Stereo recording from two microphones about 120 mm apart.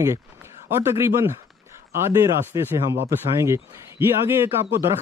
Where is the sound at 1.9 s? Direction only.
20° right (ahead or behind).